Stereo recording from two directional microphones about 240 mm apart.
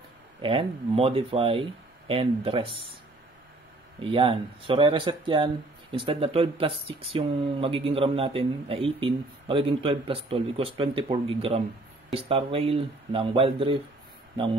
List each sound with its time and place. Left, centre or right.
0.4 s speech: right
4.0 s speech: right